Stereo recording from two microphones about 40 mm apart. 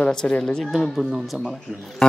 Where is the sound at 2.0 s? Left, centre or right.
Centre.